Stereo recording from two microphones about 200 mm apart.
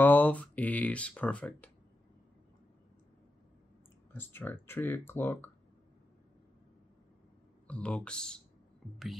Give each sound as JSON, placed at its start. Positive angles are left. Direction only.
{"t": 0.0, "sound": "speech", "side_deg": 10}
{"t": 4.1, "sound": "speech", "side_deg": 10}
{"t": 7.6, "sound": "speech", "side_deg": 5}